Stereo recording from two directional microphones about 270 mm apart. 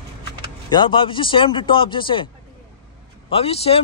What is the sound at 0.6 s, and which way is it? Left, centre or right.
A man's voice, centre.